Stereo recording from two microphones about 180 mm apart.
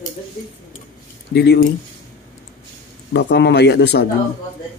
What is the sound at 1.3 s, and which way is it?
Speech, 65° left (ahead or behind).